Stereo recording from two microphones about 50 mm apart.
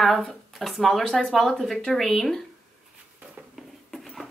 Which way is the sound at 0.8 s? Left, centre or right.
Centre.